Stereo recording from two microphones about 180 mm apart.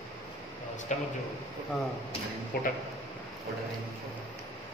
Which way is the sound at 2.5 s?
55° left (ahead or behind).